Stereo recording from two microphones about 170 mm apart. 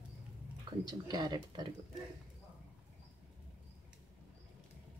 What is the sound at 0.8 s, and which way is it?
Speech, 25° right (ahead or behind).